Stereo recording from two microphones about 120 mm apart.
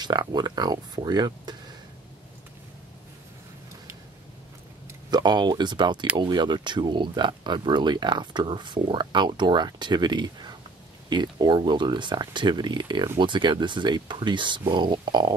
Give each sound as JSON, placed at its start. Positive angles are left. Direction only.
{"t": 0.0, "sound": "speech", "side_deg": -35}
{"t": 5.1, "sound": "speech", "side_deg": -35}